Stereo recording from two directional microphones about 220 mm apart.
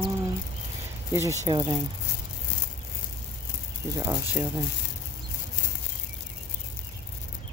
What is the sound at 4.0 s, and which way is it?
Speech, 15° right (ahead or behind).